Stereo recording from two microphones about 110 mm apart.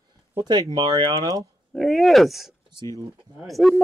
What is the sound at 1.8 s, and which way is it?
Speech, 5° left (ahead or behind).